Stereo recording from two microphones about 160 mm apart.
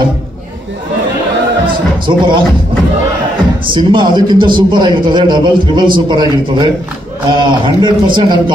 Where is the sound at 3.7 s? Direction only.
30° right (ahead or behind).